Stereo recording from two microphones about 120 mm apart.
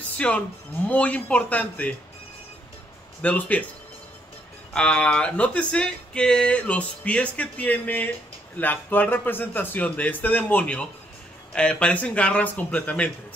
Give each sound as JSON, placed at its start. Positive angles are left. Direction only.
{"t": 0.2, "sound": "speech", "side_deg": 10}
{"t": 3.2, "sound": "speech", "side_deg": 10}
{"t": 4.7, "sound": "speech", "side_deg": 10}